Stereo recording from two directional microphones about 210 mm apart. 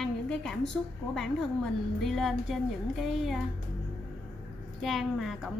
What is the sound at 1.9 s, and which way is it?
A woman's voice, centre (ahead or behind).